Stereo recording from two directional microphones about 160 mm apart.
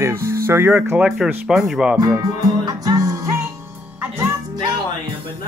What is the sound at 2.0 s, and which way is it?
Music, 25° right (ahead or behind).